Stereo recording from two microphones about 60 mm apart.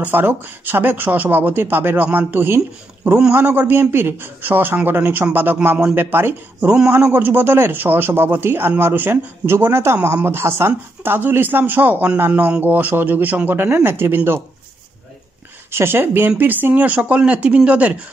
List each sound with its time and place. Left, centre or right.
0.0 s a man's voice: right
15.7 s a man's voice: right